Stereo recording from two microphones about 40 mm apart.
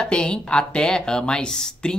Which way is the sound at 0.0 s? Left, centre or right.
Left.